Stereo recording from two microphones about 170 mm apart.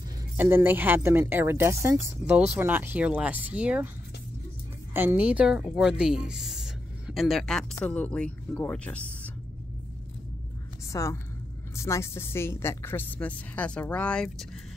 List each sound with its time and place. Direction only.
0.4 s speech: 15° right (ahead or behind)
4.9 s a woman's voice: 10° right (ahead or behind); by 9.3 s 10° left (ahead or behind)
10.9 s a woman's voice: 15° left (ahead or behind)